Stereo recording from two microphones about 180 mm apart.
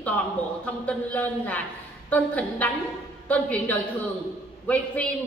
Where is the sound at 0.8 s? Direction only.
10° left (ahead or behind).